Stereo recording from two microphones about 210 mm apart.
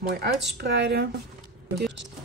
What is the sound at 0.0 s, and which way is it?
Speech, 50° right (ahead or behind).